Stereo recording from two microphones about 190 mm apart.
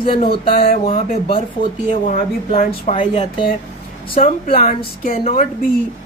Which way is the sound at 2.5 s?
40° left (ahead or behind).